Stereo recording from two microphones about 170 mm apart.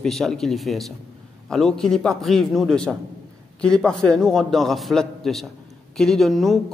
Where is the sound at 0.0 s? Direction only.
5° left (ahead or behind).